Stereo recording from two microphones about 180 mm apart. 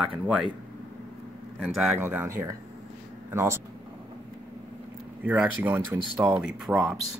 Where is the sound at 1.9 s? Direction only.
15° right (ahead or behind).